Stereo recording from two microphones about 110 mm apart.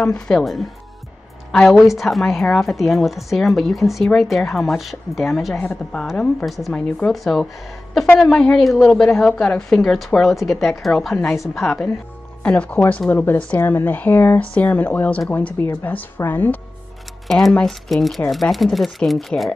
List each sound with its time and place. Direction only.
0.0 s a woman's voice: 5° left (ahead or behind); by 16.5 s 20° left (ahead or behind)
17.3 s a woman's voice: centre (ahead or behind)